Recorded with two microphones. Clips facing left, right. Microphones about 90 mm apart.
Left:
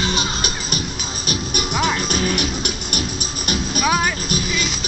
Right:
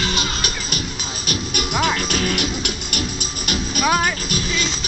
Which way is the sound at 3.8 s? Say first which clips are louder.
Right 1 dB; 5° left (ahead or behind).